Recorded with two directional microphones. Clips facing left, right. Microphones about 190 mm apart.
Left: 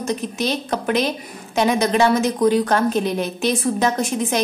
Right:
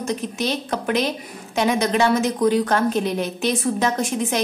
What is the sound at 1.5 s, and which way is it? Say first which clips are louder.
A woman's voice: left 2 dB; 35° left (ahead or behind).